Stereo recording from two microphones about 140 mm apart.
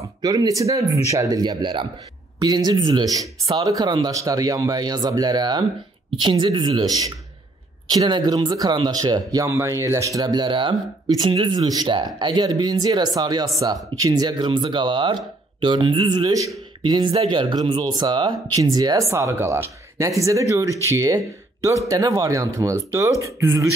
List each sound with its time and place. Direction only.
0.2 s speech: 25° right (ahead or behind)